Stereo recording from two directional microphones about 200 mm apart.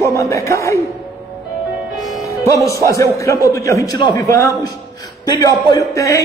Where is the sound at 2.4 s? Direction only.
15° left (ahead or behind).